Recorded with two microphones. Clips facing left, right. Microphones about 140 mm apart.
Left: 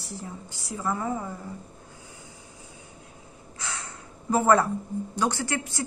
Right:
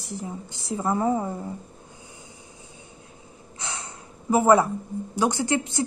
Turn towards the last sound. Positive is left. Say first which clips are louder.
# right 6 dB
turn(degrees=-20)  # may be behind; listen again after turning